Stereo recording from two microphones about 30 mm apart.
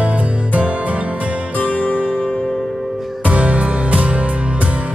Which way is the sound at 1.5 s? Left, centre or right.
Left.